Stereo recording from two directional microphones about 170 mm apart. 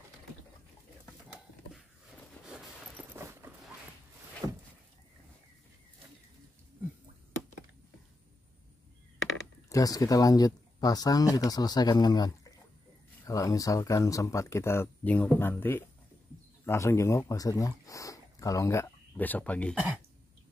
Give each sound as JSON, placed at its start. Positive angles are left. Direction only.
{"t": 2.4, "sound": "a sound", "side_deg": -5}
{"t": 4.4, "sound": "vehicle", "side_deg": -20}
{"t": 9.7, "sound": "speech", "side_deg": 20}